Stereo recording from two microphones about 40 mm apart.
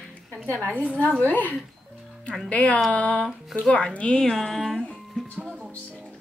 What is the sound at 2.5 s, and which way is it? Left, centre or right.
A woman's voice, left.